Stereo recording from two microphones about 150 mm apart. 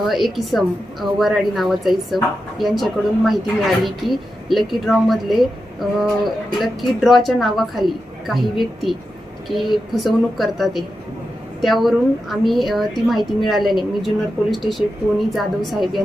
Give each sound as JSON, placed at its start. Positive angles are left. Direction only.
{"t": 0.1, "sound": "a woman's voice", "side_deg": 0}
{"t": 9.9, "sound": "a woman's voice", "side_deg": 0}